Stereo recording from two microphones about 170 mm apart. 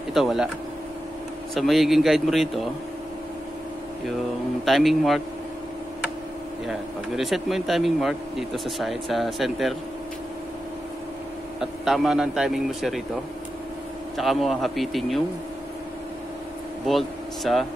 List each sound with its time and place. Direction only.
0.1 s speech: centre (ahead or behind)
1.5 s speech: centre (ahead or behind)
4.6 s speech: centre (ahead or behind)
6.7 s speech: centre (ahead or behind)
11.6 s speech: centre (ahead or behind)
14.1 s speech: centre (ahead or behind)
16.8 s speech: centre (ahead or behind)